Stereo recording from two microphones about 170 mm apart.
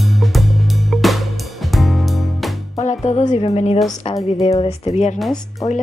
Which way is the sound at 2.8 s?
40° left (ahead or behind).